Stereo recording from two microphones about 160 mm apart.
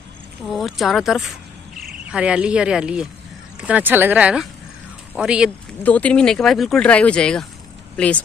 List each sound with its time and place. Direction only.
0.5 s speech: centre (ahead or behind)
5.9 s speech: 10° left (ahead or behind)